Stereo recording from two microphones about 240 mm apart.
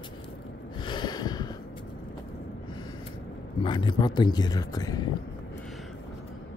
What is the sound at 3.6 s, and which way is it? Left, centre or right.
Speech, centre.